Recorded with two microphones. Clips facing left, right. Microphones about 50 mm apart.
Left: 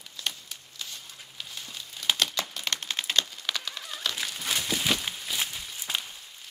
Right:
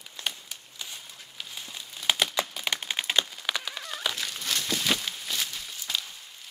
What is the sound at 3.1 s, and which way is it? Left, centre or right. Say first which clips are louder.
Typing: right 1 dB; centre.